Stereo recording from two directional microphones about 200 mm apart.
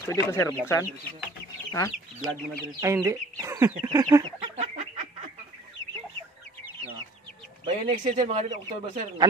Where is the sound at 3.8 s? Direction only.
20° right (ahead or behind).